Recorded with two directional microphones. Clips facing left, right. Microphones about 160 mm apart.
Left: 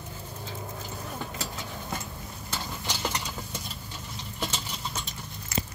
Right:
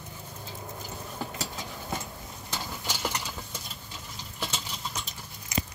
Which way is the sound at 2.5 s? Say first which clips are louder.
Left 1 dB; 10° right (ahead or behind).